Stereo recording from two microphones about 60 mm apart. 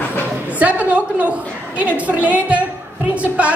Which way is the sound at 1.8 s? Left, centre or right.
Right.